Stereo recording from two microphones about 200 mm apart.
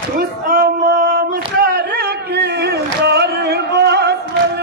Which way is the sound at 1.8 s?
55° right (ahead or behind).